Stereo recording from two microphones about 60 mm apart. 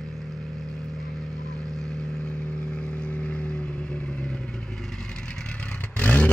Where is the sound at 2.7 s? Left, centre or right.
Centre.